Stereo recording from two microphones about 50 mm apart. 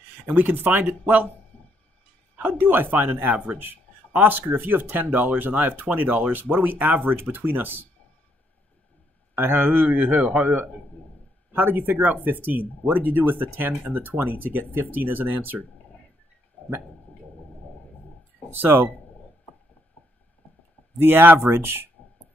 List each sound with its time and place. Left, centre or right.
0.2 s speech: right
1.5 s a sound: left
2.3 s speech: right
9.3 s speech: right
18.5 s speech: right
21.0 s speech: right